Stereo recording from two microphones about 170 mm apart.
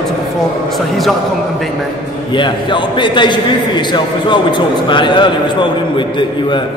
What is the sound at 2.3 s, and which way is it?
A man's voice, 30° left (ahead or behind).